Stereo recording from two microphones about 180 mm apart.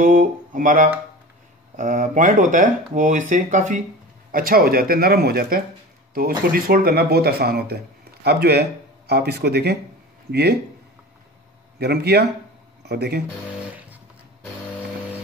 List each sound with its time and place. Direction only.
0.0 s speech: 45° right (ahead or behind); by 10.6 s 65° right (ahead or behind)
11.8 s speech: 65° right (ahead or behind)